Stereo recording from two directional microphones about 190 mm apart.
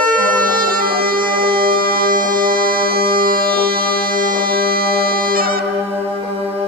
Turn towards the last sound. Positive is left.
turn(degrees=-50)  # may be behind; listen again after turning